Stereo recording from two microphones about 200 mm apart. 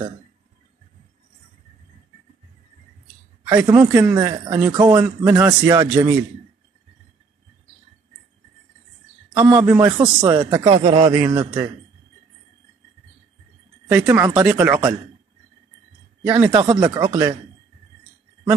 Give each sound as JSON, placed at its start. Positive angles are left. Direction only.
{"t": 3.6, "sound": "a man's voice", "side_deg": -15}
{"t": 9.3, "sound": "a man's voice", "side_deg": -5}
{"t": 13.9, "sound": "a man's voice", "side_deg": -10}
{"t": 16.3, "sound": "a man's voice", "side_deg": -10}
{"t": 16.5, "sound": "speech", "side_deg": -20}